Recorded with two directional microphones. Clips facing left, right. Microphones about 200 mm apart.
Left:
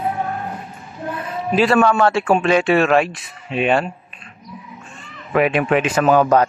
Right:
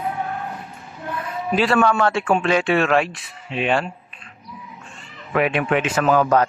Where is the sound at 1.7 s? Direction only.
25° left (ahead or behind).